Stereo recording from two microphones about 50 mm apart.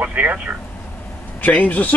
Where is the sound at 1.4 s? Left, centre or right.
Left.